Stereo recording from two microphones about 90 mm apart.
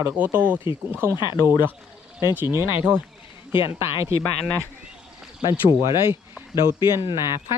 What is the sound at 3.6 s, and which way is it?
Speech, 70° left (ahead or behind).